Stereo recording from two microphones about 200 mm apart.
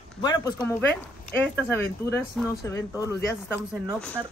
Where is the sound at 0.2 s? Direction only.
20° left (ahead or behind).